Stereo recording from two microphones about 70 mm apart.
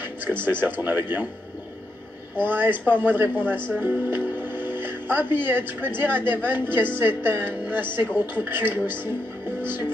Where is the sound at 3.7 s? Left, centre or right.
Right.